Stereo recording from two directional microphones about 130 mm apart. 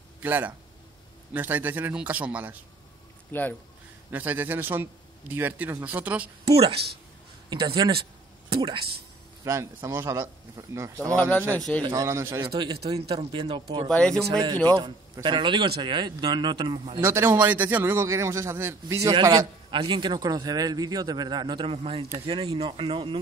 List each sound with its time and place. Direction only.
0.2 s a man's voice: 15° right (ahead or behind)
3.3 s speech: 15° left (ahead or behind)
4.1 s a man's voice: 15° right (ahead or behind)
7.4 s a man's voice: 35° right (ahead or behind)
9.4 s a man's voice: 25° right (ahead or behind)
11.1 s speech: 10° left (ahead or behind)
11.8 s a man's voice: 30° right (ahead or behind)
12.4 s a man's voice: 35° right (ahead or behind)
13.8 s speech: 5° left (ahead or behind)
15.2 s a man's voice: 40° right (ahead or behind)
17.0 s a man's voice: 20° right (ahead or behind)
19.0 s a man's voice: 30° right (ahead or behind)
22.2 s a man's voice: 35° right (ahead or behind)